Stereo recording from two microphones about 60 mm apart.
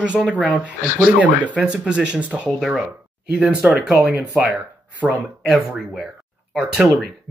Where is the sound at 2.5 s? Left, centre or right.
Centre.